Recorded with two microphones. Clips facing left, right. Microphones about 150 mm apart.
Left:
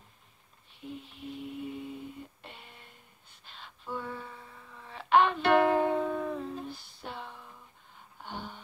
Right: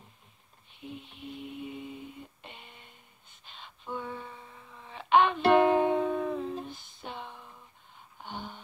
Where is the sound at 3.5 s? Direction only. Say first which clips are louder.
Even; 15° right (ahead or behind).